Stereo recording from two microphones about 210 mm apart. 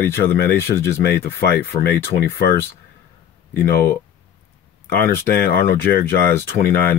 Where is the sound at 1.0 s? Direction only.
45° left (ahead or behind).